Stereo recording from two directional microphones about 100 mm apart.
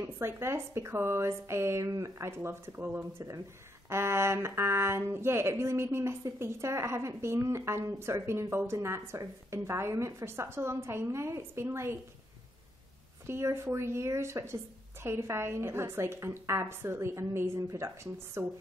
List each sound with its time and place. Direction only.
0.0 s speech: 25° right (ahead or behind)
13.3 s speech: 25° right (ahead or behind)